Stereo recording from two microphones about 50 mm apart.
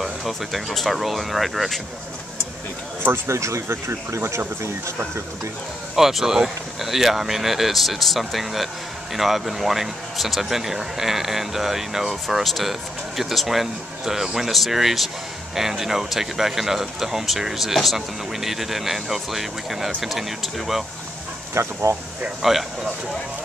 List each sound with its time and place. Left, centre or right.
0.0 s speech: centre
3.3 s speech: right
3.7 s speech: right
5.9 s speech: centre
21.6 s speech: right
22.4 s speech: centre